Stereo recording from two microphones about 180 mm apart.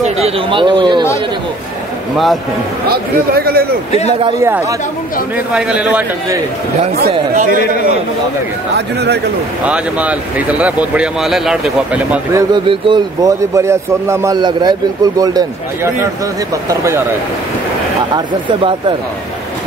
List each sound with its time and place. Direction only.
0.0 s a man's voice: 30° right (ahead or behind)
2.9 s speech: 60° right (ahead or behind)
4.4 s speech: 15° right (ahead or behind)
7.1 s speech: 45° right (ahead or behind)
8.7 s speech: 65° right (ahead or behind)
9.7 s speech: 5° right (ahead or behind)
12.5 s a man's voice: 25° right (ahead or behind)
18.1 s a man's voice: 25° right (ahead or behind)